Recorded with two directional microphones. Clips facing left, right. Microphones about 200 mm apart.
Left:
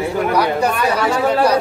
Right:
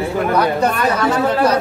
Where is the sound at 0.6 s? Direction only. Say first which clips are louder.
Even; 10° left (ahead or behind).